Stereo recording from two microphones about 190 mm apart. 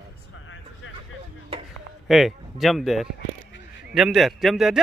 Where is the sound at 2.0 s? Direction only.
Centre (ahead or behind).